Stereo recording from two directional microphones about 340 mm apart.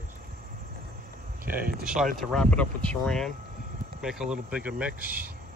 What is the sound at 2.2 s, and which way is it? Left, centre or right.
Cricket, centre.